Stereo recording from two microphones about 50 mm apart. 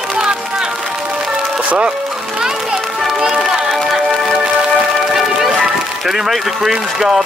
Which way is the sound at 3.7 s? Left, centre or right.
Centre.